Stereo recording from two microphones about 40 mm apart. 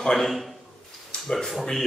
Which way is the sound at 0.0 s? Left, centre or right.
Centre.